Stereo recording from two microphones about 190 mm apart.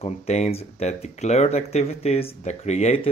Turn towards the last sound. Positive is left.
turn(degrees=35)  # may be behind; listen again after turning